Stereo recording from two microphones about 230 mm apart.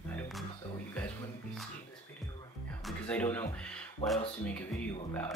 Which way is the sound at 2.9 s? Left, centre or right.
Centre.